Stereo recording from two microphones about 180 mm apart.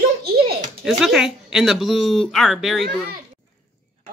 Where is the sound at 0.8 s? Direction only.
Centre (ahead or behind).